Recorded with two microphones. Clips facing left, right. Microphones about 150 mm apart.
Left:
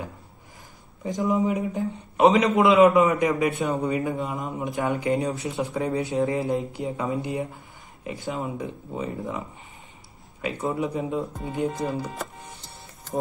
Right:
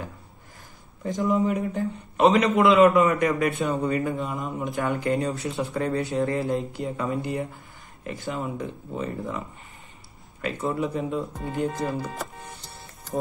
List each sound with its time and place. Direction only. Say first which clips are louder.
1.3 s speech: even; 15° left (ahead or behind)
10.8 s speech: even; 15° left (ahead or behind)
11.9 s speech: even; centre (ahead or behind)